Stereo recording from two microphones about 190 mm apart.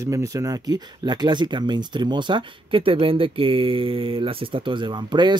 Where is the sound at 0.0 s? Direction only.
15° right (ahead or behind).